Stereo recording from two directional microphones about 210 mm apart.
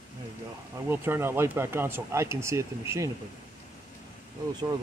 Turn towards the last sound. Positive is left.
turn(degrees=-20)  # may be behind; listen again after turning